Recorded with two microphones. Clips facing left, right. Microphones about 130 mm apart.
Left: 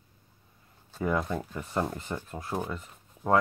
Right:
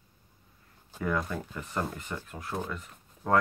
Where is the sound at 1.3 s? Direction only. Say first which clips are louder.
Left 3 dB; 25° left (ahead or behind).